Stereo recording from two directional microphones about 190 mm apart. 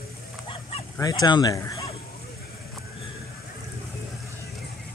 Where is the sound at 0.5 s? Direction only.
30° left (ahead or behind).